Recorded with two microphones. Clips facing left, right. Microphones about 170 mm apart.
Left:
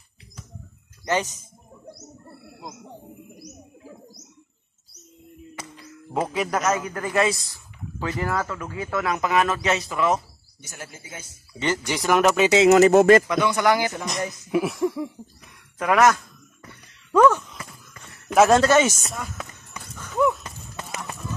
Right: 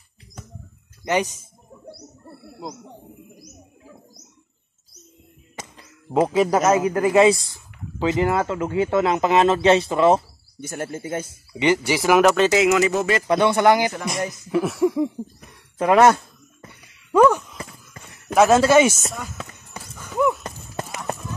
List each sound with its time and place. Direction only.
1.0 s speech: 15° right (ahead or behind)
6.1 s speech: 30° right (ahead or behind)
10.6 s speech: 55° right (ahead or behind)
11.5 s speech: 15° right (ahead or behind)
12.7 s speech: 45° left (ahead or behind)
13.3 s speech: 30° right (ahead or behind)
14.2 s a man's voice: 5° left (ahead or behind)
14.8 s cough: 15° right (ahead or behind)
15.8 s a sound: 30° right (ahead or behind)
16.8 s a sound: 10° right (ahead or behind)
18.3 s a man's voice: centre (ahead or behind)
19.8 s horse: 5° right (ahead or behind)